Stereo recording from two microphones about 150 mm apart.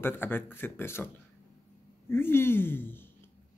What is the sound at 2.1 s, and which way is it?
Speech, 15° left (ahead or behind).